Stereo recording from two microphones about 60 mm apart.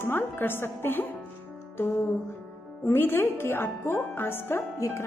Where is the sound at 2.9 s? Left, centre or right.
Left.